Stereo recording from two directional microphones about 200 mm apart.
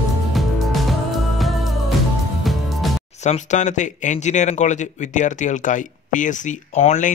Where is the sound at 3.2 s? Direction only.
35° left (ahead or behind).